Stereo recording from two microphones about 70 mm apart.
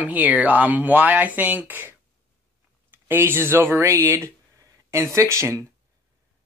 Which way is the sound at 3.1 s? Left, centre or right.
Right.